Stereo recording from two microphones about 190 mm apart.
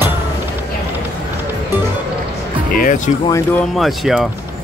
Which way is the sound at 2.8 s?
45° left (ahead or behind).